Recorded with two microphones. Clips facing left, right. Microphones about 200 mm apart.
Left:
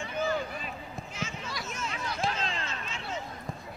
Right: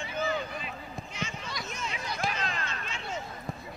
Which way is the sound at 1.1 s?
5° left (ahead or behind).